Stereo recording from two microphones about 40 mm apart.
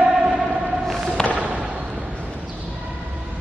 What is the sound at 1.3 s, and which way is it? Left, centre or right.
Basketball bounce, right.